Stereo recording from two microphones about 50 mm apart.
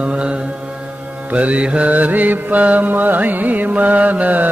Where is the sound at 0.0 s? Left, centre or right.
Right.